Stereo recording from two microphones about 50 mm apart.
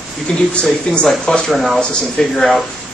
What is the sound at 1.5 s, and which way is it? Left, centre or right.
Speech, centre.